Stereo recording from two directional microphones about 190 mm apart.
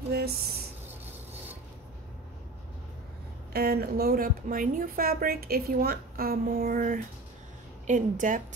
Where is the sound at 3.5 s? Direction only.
55° right (ahead or behind).